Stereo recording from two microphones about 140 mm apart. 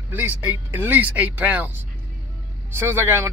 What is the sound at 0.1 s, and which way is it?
Speech, 15° right (ahead or behind).